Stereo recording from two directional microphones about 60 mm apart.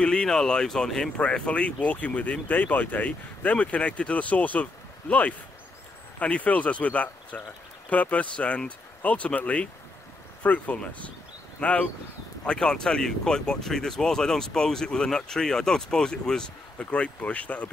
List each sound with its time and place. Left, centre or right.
0.0 s speech: centre
1.1 s speech: centre
12.4 s speech: centre
16.8 s speech: left